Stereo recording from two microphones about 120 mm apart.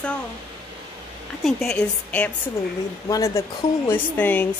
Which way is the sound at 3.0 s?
30° left (ahead or behind).